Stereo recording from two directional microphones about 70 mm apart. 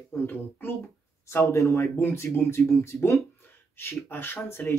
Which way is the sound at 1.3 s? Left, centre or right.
Left.